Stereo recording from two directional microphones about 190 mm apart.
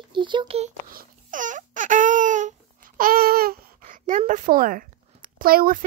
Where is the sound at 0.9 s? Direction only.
45° right (ahead or behind).